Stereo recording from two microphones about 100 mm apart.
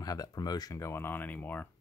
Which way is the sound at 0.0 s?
40° left (ahead or behind).